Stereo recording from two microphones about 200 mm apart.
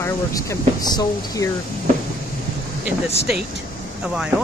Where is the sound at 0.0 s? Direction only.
15° left (ahead or behind).